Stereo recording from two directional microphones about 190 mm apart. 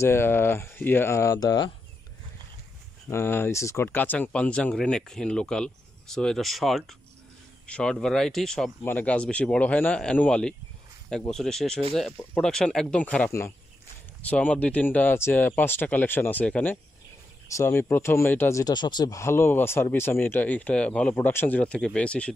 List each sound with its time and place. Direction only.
0.0 s speech: 10° left (ahead or behind)
3.1 s speech: 10° left (ahead or behind)